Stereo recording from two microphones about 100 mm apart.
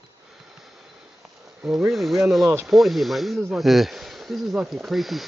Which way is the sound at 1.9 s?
Centre (ahead or behind).